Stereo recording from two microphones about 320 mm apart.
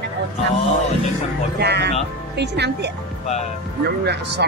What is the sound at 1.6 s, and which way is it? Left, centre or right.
Speech, right.